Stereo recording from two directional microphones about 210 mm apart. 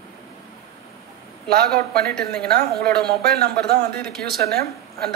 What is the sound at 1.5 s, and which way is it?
A man's voice, 45° right (ahead or behind).